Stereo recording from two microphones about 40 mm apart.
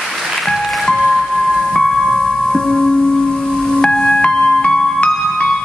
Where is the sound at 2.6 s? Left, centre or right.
Centre.